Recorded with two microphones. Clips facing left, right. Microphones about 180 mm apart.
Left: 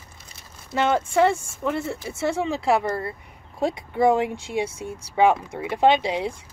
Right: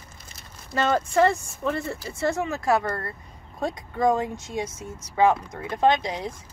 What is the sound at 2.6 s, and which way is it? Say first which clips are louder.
Speech: left 1 dB; 15° left (ahead or behind).